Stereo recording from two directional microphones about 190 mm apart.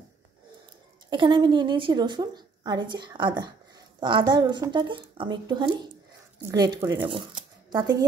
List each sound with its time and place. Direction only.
1.1 s a woman's voice: 25° right (ahead or behind)